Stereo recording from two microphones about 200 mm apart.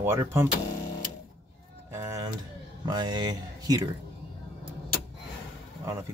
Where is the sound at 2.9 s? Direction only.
20° right (ahead or behind).